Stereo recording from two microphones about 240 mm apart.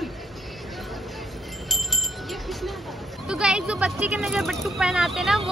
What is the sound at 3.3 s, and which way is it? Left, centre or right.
Speech, centre.